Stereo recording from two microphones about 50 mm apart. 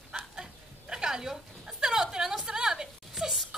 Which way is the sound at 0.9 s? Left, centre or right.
Centre.